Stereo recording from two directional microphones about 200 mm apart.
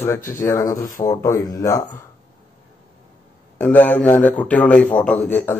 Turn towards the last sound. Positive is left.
turn(degrees=10)  # may be behind; listen again after turning